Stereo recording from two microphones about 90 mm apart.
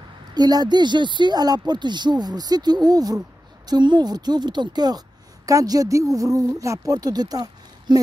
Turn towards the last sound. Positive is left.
turn(degrees=-45)  # may be behind; listen again after turning